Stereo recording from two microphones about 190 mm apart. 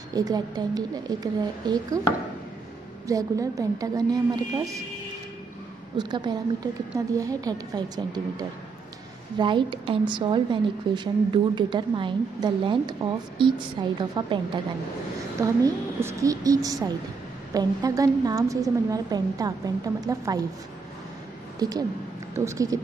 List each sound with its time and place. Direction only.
0.1 s a woman's voice: 20° right (ahead or behind)
3.1 s a woman's voice: 15° right (ahead or behind)
5.9 s a woman's voice: 25° right (ahead or behind)
21.5 s a woman's voice: 20° right (ahead or behind)